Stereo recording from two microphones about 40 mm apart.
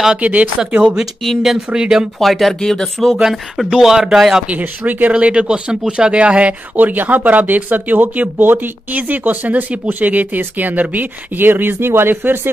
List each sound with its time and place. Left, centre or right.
0.1 s speech: right
1.7 s speech: centre
2.1 s speech: centre
3.7 s speech: centre
4.5 s speech: right
5.1 s speech: right
6.8 s speech: right